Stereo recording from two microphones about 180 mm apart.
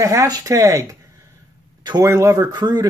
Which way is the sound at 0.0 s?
15° right (ahead or behind).